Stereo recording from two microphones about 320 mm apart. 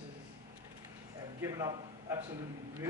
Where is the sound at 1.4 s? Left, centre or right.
Centre.